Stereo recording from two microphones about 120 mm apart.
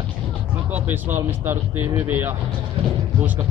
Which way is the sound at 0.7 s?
15° right (ahead or behind).